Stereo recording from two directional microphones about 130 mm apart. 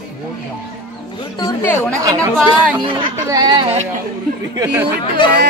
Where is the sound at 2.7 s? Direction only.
40° right (ahead or behind).